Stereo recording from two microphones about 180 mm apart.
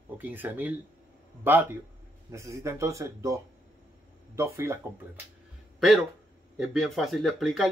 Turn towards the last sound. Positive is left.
turn(degrees=0)  # may be behind; listen again after turning